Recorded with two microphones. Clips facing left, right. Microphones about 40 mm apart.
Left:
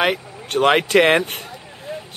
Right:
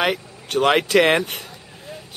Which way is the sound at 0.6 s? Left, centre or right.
Centre.